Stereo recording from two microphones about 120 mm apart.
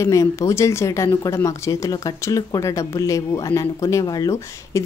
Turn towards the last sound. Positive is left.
turn(degrees=30)  # may be behind; listen again after turning